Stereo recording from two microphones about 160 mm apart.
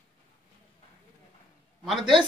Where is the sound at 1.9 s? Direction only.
Centre (ahead or behind).